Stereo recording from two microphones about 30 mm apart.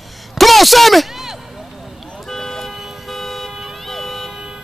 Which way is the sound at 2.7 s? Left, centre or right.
Centre.